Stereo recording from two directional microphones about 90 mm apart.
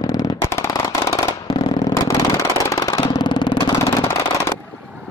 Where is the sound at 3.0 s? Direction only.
55° left (ahead or behind).